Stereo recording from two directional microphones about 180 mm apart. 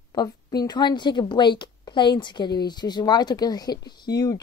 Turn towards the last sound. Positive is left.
turn(degrees=20)  # may be behind; listen again after turning